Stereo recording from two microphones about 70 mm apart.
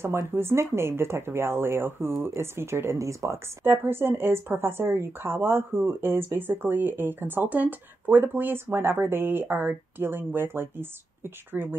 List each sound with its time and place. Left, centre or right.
0.0 s a woman's voice: right
3.6 s a woman's voice: right